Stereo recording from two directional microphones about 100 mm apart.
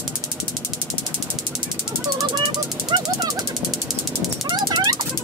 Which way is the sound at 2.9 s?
50° right (ahead or behind).